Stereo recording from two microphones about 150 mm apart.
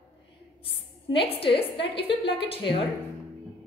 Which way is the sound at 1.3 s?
40° left (ahead or behind).